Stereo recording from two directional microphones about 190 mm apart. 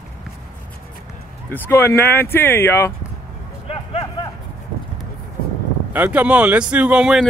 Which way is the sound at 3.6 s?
30° left (ahead or behind).